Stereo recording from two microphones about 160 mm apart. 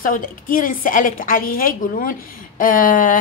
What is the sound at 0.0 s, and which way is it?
A woman's voice, 55° left (ahead or behind).